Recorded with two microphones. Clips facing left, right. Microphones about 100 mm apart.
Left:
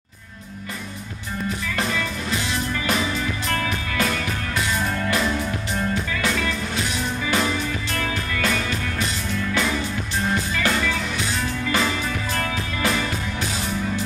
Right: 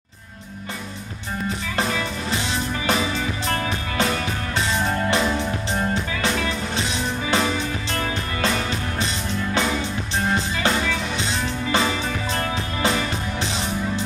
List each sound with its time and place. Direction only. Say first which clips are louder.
1.8 s music: right 2 dB; 30° right (ahead or behind)
12.4 s music: right 1 dB; 25° right (ahead or behind)